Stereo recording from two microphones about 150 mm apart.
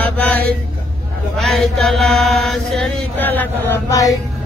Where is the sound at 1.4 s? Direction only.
Centre (ahead or behind); by 4.2 s 20° left (ahead or behind).